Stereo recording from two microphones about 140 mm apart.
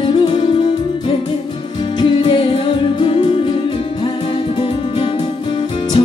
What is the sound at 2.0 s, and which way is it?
Music, 35° left (ahead or behind).